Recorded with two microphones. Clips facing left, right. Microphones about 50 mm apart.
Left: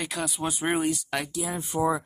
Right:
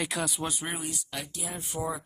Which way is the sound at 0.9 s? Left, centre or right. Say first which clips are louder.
Left 9 dB; left.